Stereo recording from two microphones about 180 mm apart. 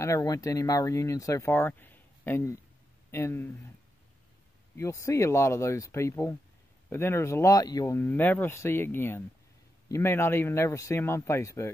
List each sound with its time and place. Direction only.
0.0 s speech: 20° left (ahead or behind)
4.7 s speech: 15° left (ahead or behind)